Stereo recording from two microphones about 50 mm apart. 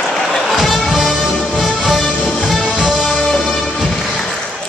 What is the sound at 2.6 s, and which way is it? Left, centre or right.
Music, centre.